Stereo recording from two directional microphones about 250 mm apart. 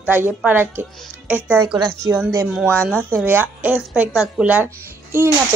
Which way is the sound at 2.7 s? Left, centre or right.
Centre.